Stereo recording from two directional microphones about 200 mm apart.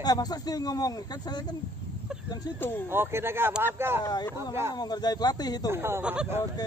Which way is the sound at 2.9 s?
10° right (ahead or behind).